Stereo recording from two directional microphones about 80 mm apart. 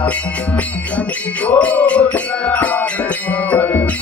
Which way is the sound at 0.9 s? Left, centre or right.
Centre.